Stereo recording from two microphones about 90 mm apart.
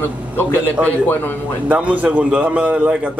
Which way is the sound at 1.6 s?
15° right (ahead or behind).